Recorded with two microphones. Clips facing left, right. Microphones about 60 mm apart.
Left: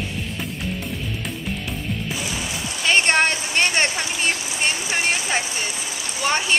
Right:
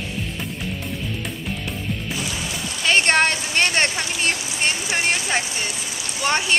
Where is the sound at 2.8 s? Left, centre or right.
Centre.